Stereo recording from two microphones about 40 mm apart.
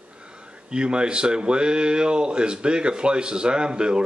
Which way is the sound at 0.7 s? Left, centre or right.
Right.